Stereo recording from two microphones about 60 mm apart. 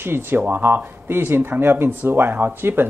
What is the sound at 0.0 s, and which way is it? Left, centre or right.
Speech, right.